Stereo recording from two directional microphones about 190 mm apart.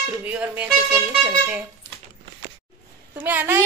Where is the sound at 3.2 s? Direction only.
10° right (ahead or behind).